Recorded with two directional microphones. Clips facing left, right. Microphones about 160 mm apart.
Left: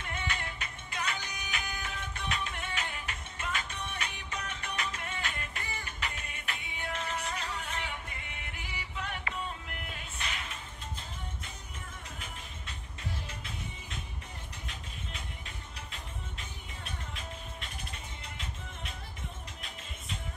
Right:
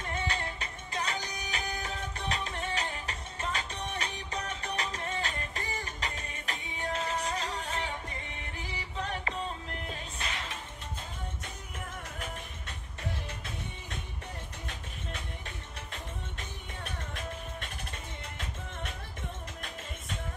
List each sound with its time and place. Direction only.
0.0 s music: 35° right (ahead or behind)